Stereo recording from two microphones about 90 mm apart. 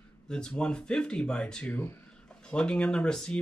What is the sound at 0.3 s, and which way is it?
Speech, 10° left (ahead or behind).